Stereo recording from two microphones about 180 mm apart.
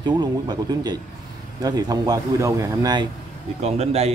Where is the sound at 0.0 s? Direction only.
25° right (ahead or behind).